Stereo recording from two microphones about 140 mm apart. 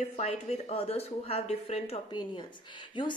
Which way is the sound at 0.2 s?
45° left (ahead or behind).